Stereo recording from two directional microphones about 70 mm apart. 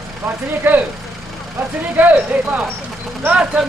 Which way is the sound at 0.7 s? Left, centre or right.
Right.